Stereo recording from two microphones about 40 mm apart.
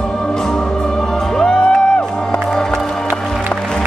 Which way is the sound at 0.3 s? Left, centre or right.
Centre.